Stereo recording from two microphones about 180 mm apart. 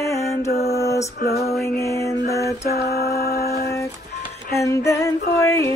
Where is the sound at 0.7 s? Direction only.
15° left (ahead or behind).